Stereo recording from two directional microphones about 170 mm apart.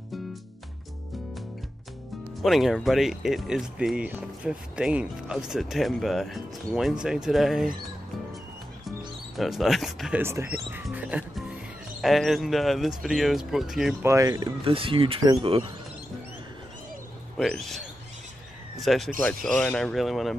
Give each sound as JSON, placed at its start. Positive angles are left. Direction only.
{"t": 2.4, "sound": "speech", "side_deg": 0}
{"t": 9.4, "sound": "speech", "side_deg": 0}
{"t": 10.2, "sound": "speech", "side_deg": -15}
{"t": 14.0, "sound": "speech", "side_deg": -20}
{"t": 14.6, "sound": "speech", "side_deg": -30}
{"t": 17.4, "sound": "speech", "side_deg": 0}